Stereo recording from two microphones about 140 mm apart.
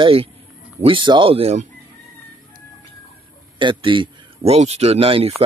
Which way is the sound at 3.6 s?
35° right (ahead or behind).